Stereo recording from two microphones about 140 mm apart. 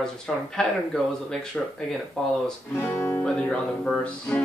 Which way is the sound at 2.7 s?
15° left (ahead or behind).